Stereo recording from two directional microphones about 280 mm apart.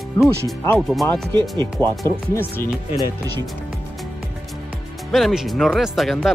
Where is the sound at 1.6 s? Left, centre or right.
Centre.